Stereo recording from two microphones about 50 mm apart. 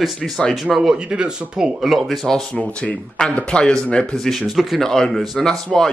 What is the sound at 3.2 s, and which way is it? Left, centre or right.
Speech, centre.